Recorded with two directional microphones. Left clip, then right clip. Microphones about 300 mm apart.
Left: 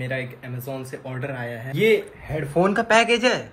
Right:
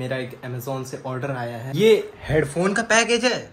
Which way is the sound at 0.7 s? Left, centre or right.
Centre.